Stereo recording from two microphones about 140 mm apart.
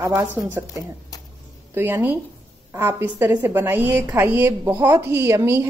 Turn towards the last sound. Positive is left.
turn(degrees=-20)  # may be behind; listen again after turning